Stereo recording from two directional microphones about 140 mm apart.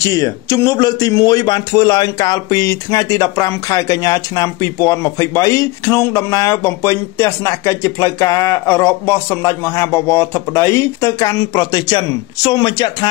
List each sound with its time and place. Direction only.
0.0 s speech: 25° left (ahead or behind)